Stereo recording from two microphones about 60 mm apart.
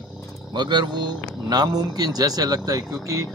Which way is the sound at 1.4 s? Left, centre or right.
Right.